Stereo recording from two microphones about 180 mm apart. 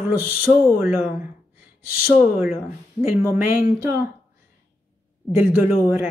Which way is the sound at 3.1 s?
15° right (ahead or behind).